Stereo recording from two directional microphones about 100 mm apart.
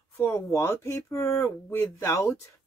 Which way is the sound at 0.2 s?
25° left (ahead or behind).